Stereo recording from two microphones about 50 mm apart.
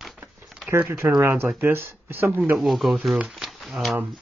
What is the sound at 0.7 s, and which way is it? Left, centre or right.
Speech, right.